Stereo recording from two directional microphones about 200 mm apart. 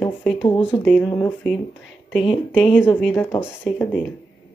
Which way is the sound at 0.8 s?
5° left (ahead or behind).